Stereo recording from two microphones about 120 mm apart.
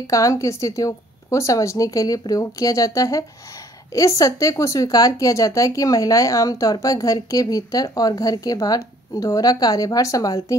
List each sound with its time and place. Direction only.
0.0 s a woman's voice: 25° left (ahead or behind)